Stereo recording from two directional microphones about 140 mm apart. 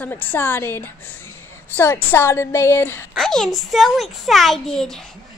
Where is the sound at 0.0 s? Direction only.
15° left (ahead or behind).